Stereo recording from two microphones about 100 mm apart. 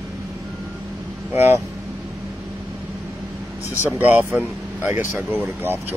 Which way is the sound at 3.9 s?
20° right (ahead or behind).